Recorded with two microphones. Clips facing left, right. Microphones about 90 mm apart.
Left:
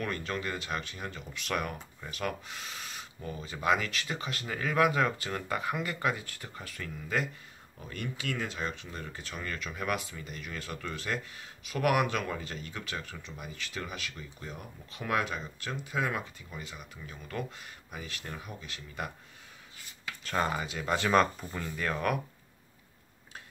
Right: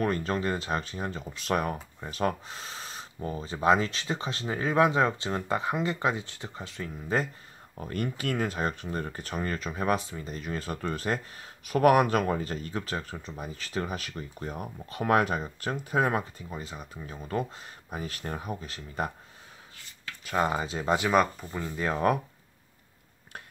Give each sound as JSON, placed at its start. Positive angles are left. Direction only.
{"t": 0.0, "sound": "speech", "side_deg": -35}
{"t": 7.7, "sound": "speech", "side_deg": -45}
{"t": 20.2, "sound": "speech", "side_deg": -15}
{"t": 20.5, "sound": "speech", "side_deg": -30}
{"t": 20.9, "sound": "speech", "side_deg": -10}
{"t": 21.5, "sound": "speech", "side_deg": -20}